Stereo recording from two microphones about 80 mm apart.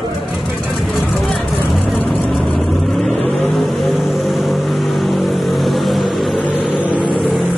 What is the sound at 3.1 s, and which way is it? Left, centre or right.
Vehicle, centre.